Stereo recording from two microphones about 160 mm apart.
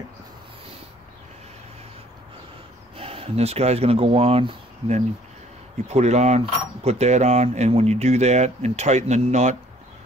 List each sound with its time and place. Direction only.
3.0 s speech: 40° right (ahead or behind)